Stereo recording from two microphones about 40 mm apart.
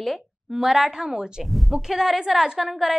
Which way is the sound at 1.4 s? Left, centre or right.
Centre.